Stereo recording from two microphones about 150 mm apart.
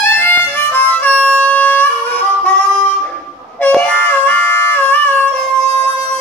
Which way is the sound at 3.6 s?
10° left (ahead or behind).